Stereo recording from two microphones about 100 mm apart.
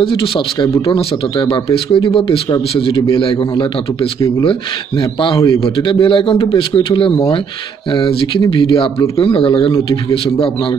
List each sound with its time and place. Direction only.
0.0 s a man's voice: 60° left (ahead or behind)
9.8 s speech: 65° left (ahead or behind)